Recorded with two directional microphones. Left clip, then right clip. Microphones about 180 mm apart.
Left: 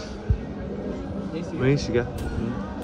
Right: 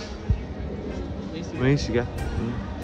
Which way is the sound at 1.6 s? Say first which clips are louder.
Left 1 dB; 15° right (ahead or behind).